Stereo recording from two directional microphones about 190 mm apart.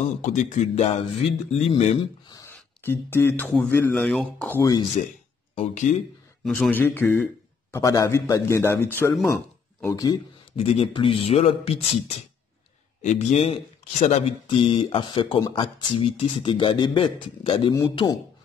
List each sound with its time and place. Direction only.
0.2 s speech: 40° left (ahead or behind)
2.2 s a sound: 20° left (ahead or behind)
2.5 s speech: 10° left (ahead or behind)
5.9 s speech: 40° left (ahead or behind)
6.4 s speech: 5° left (ahead or behind)
10.5 s speech: 30° left (ahead or behind)